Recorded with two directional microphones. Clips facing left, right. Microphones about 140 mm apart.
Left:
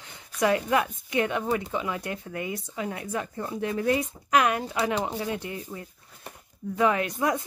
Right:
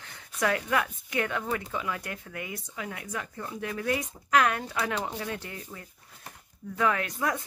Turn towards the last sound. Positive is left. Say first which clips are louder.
# left 4 dB
turn(degrees=20)  # may be behind; listen again after turning